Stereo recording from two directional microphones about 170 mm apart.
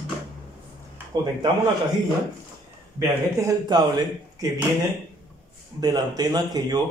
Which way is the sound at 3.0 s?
20° right (ahead or behind).